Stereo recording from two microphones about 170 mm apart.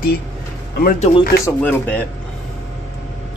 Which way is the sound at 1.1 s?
35° left (ahead or behind).